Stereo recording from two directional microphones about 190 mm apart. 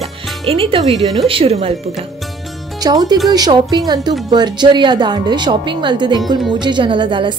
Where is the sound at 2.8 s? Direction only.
20° right (ahead or behind).